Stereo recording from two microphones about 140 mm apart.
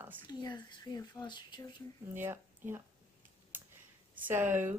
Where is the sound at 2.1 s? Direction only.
15° right (ahead or behind).